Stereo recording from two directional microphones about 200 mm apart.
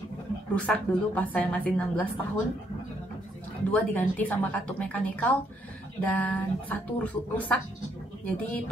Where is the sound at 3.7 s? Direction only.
10° left (ahead or behind).